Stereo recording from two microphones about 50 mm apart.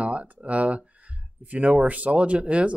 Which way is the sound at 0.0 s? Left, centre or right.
Right.